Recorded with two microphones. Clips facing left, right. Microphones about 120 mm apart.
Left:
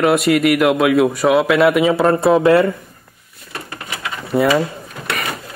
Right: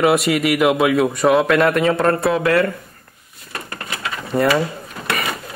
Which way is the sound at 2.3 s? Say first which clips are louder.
Left 8 dB; 25° left (ahead or behind).